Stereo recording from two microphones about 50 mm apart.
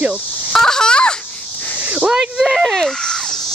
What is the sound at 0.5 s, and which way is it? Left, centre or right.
Speech, centre.